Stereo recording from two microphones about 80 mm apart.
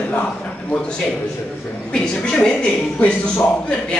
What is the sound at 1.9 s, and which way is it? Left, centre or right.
A man's voice, centre.